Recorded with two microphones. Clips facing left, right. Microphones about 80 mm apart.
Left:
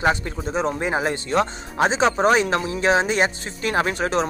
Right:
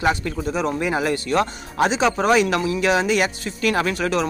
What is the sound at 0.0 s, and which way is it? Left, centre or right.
Speech, left.